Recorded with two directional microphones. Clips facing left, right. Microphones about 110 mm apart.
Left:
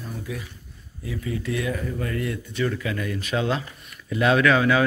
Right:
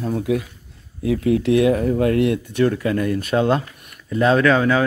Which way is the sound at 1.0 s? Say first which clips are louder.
Right 12 dB; 75° right (ahead or behind).